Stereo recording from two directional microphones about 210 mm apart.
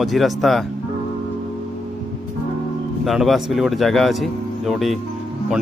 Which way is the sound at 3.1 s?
Centre (ahead or behind).